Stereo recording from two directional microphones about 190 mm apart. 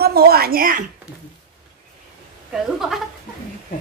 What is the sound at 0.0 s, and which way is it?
Speech, 55° right (ahead or behind).